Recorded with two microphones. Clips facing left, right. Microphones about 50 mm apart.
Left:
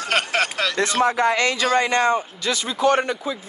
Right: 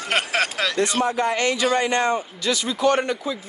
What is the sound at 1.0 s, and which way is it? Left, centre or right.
Speech, left.